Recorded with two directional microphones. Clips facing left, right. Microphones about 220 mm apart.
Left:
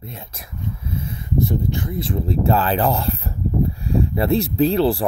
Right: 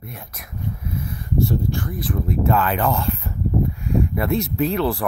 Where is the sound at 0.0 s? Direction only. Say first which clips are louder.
Left 1 dB; 25° left (ahead or behind).